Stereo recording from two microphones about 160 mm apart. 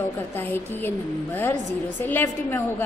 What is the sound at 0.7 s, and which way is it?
A woman's voice, 10° left (ahead or behind).